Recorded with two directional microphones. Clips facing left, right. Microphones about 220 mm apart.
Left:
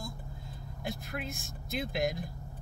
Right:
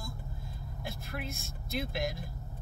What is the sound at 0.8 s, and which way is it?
A woman's voice, 15° left (ahead or behind).